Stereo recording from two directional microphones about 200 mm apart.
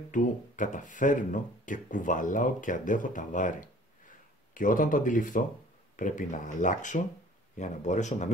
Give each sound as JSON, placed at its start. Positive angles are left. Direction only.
{"t": 0.1, "sound": "speech", "side_deg": 40}